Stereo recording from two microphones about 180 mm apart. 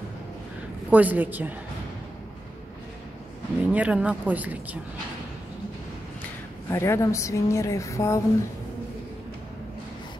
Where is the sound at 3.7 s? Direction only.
5° right (ahead or behind).